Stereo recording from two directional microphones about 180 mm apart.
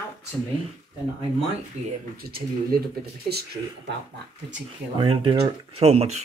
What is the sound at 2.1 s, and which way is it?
Speech, 55° right (ahead or behind).